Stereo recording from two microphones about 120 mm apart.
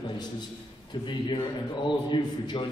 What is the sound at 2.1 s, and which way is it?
Speech, 40° left (ahead or behind).